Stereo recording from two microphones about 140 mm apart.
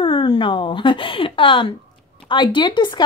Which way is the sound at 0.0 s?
35° left (ahead or behind).